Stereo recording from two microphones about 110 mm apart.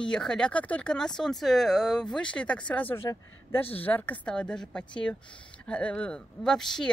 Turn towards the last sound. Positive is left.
turn(degrees=5)  # may be behind; listen again after turning